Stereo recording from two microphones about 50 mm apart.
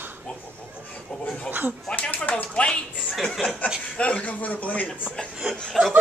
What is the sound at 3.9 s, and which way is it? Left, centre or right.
Speech, left.